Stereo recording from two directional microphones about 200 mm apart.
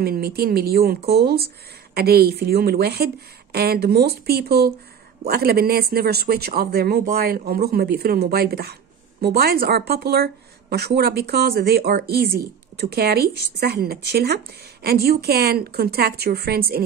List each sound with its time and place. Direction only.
0.0 s speech: 50° right (ahead or behind)